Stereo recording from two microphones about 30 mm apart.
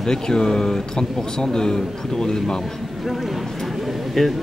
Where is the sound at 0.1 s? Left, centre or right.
Left.